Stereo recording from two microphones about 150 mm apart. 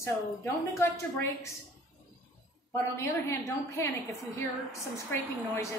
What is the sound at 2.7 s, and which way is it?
A woman's voice, 20° left (ahead or behind).